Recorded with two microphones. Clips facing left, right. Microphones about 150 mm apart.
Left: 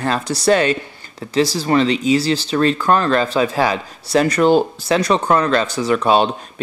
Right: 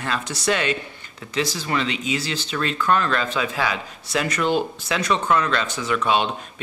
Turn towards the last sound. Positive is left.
turn(degrees=35)  # may be behind; listen again after turning